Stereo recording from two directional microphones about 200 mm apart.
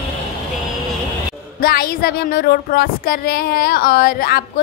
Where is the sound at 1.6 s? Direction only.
50° left (ahead or behind).